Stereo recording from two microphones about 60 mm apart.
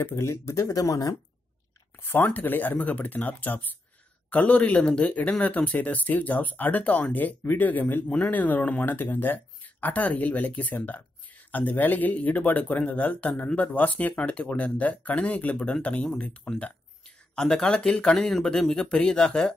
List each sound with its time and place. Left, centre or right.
0.0 s speech: left
2.0 s speech: left; by 19.5 s centre